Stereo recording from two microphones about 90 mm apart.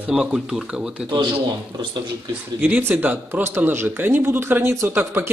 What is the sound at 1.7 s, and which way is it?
Speech, 50° right (ahead or behind).